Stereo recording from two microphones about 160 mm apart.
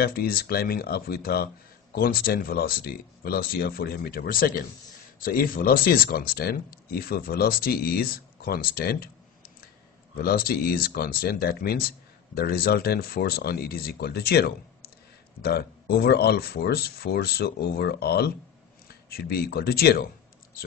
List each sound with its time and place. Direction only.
0.0 s speech: 70° left (ahead or behind)